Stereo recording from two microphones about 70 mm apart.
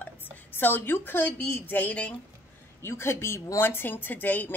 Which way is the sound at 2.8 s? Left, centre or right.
Left.